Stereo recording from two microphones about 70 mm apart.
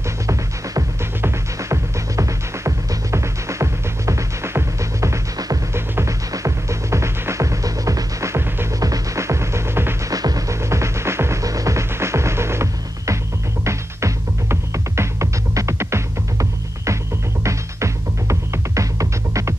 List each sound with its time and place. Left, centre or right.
1.2 s music: right
8.7 s music: right
10.0 s music: right
11.4 s music: right